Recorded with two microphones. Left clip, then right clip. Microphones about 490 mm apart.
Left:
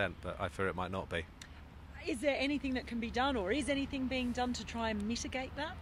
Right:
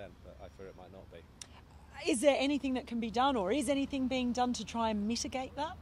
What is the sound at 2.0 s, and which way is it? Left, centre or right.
Speech, right.